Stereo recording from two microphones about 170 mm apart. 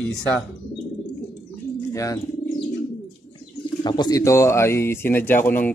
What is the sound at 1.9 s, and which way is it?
Speech, 20° left (ahead or behind).